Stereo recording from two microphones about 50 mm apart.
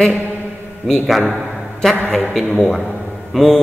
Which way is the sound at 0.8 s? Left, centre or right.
Centre.